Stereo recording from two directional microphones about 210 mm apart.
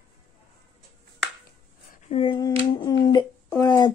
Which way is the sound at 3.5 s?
15° left (ahead or behind).